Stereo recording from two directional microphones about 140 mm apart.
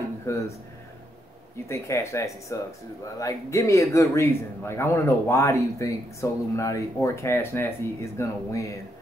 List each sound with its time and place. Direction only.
0.3 s speech: 20° left (ahead or behind)
1.7 s speech: 20° left (ahead or behind)